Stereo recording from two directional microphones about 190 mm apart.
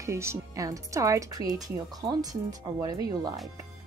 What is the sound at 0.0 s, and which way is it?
Speech, 15° right (ahead or behind).